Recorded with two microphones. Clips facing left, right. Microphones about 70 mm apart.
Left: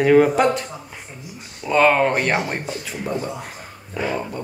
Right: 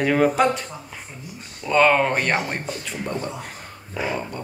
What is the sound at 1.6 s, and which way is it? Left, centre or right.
Speech, centre.